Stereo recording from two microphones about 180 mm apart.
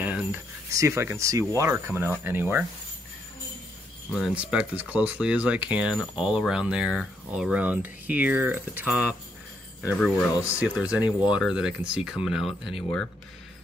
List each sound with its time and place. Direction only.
0.0 s cricket: 10° right (ahead or behind)
0.7 s speech: 15° right (ahead or behind)
4.1 s speech: 5° right (ahead or behind)
10.3 s speech: 15° left (ahead or behind)
10.6 s speech: 5° right (ahead or behind)